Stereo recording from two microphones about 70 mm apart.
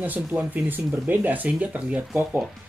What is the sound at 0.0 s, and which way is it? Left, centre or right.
Speech, right.